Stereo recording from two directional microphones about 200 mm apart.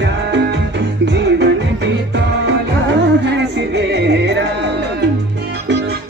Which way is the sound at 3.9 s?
60° right (ahead or behind).